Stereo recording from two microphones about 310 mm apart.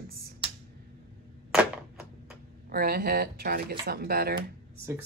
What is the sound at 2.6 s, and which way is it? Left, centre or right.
Speech, right.